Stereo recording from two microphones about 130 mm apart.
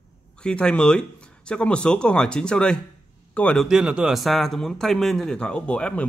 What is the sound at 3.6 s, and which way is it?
A man's voice, 5° right (ahead or behind).